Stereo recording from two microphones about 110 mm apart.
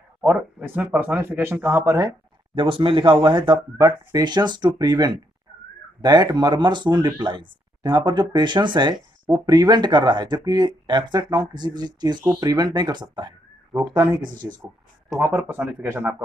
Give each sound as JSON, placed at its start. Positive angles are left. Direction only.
{"t": 0.2, "sound": "speech", "side_deg": -20}
{"t": 2.5, "sound": "speech", "side_deg": -50}
{"t": 3.7, "sound": "speech", "side_deg": -35}
{"t": 15.3, "sound": "speech", "side_deg": -15}